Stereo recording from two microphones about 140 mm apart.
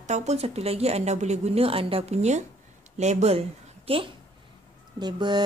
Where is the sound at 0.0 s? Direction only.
55° right (ahead or behind).